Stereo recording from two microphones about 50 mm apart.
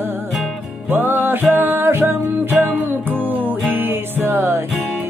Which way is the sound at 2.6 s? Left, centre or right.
Right.